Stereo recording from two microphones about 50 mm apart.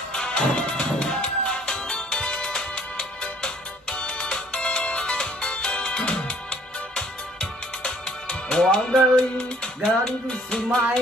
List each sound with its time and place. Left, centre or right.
0.1 s music: centre